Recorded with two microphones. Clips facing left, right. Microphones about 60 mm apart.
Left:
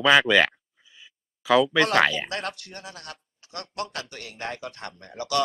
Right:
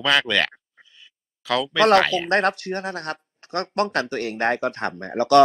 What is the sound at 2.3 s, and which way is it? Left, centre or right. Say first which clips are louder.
Speech: right 12 dB; right.